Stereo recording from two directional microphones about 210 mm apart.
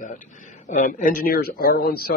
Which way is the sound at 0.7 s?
35° left (ahead or behind).